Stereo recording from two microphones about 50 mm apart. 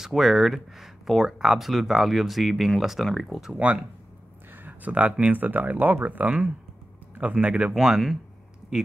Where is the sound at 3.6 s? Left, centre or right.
Right.